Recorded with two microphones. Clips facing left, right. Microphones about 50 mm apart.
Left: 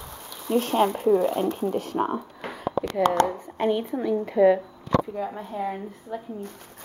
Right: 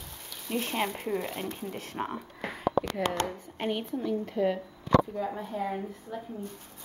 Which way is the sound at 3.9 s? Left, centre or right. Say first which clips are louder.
Left 5 dB; left.